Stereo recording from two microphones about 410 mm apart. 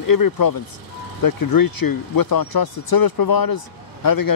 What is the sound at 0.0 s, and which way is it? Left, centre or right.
Speech, left.